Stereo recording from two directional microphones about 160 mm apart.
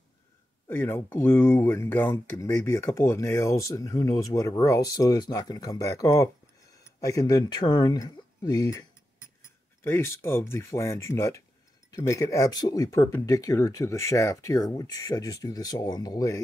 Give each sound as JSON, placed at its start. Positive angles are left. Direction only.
{"t": 0.7, "sound": "speech", "side_deg": 15}
{"t": 9.8, "sound": "speech", "side_deg": 15}